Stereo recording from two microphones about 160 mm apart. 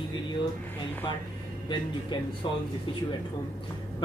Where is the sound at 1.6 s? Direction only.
30° left (ahead or behind).